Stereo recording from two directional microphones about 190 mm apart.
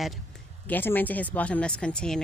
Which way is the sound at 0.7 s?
10° left (ahead or behind).